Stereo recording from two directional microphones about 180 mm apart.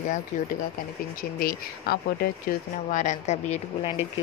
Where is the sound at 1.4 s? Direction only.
60° left (ahead or behind).